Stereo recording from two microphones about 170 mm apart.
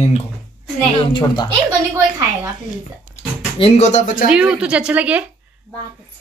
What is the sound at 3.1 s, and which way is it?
Speech, 40° left (ahead or behind).